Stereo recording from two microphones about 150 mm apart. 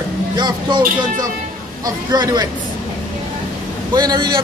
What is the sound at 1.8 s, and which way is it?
Speech, 25° right (ahead or behind).